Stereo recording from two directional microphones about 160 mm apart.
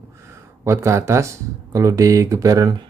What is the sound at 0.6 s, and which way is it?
Speech, 15° right (ahead or behind).